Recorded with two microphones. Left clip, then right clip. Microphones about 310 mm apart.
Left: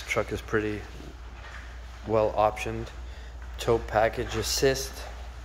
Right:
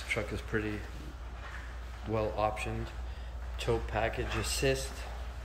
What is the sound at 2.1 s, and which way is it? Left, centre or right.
Speech, centre.